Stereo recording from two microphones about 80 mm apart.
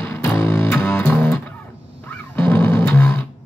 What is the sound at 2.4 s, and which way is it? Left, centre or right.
Music, centre.